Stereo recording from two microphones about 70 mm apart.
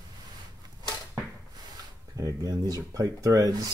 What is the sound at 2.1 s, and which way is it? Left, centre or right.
Speech, right.